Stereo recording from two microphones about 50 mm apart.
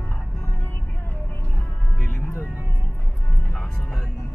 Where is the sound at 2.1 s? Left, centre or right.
Left.